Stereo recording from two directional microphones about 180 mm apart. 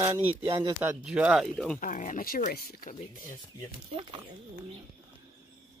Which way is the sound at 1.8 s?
45° left (ahead or behind).